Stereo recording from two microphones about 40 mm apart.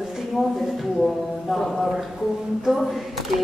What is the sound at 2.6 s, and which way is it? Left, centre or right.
Speech, centre.